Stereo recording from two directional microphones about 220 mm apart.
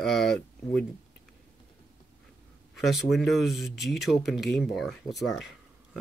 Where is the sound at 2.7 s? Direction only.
Centre (ahead or behind).